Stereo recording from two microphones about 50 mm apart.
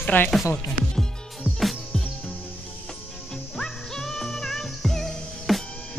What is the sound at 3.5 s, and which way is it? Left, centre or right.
Music, centre.